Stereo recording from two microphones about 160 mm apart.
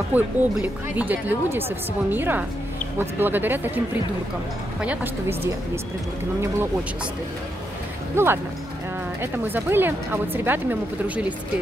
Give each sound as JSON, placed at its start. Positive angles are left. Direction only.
{"t": 0.1, "sound": "speech", "side_deg": -10}
{"t": 8.2, "sound": "speech", "side_deg": -15}